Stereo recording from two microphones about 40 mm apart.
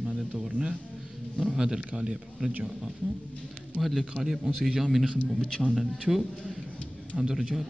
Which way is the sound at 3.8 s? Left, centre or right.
Centre.